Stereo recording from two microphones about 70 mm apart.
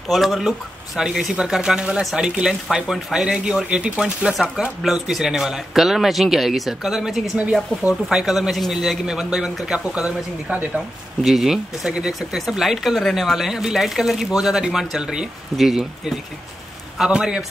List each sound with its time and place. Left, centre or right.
0.1 s speech: centre